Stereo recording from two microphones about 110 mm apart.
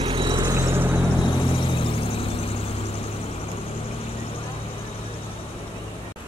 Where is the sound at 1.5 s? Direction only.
50° left (ahead or behind).